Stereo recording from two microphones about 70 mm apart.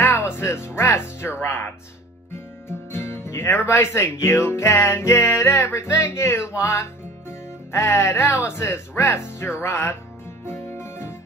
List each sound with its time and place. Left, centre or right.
0.1 s speech: left
2.9 s speech: left
10.4 s music: left